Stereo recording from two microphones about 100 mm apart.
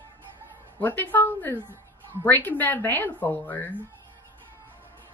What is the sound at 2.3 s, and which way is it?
A woman's voice, 20° left (ahead or behind).